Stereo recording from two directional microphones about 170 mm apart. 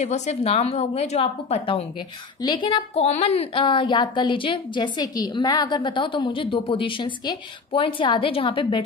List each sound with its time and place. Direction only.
0.0 s a woman's voice: 40° left (ahead or behind)
2.9 s a woman's voice: 40° left (ahead or behind)